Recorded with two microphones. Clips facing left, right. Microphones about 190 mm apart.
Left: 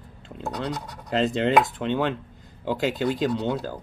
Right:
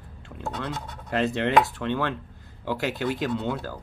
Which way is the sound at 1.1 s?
20° left (ahead or behind).